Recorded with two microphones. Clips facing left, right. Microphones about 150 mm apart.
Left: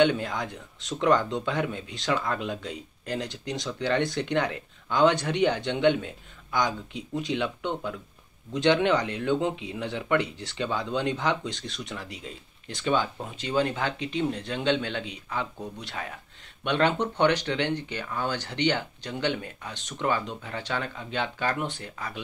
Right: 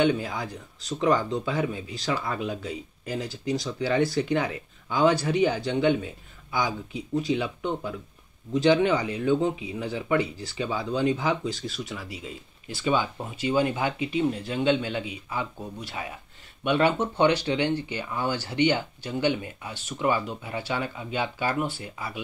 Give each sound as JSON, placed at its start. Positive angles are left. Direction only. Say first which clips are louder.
{"t": 0.0, "sound": "speech", "louder": "left 1 dB", "side_deg": 0}